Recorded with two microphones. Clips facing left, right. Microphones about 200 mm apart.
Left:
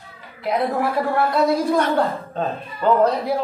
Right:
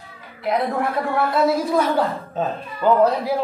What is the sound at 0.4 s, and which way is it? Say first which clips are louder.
A woman's voice: even; centre (ahead or behind).